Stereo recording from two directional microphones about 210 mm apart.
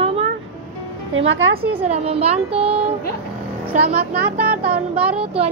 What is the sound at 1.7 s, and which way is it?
Speech, 30° right (ahead or behind).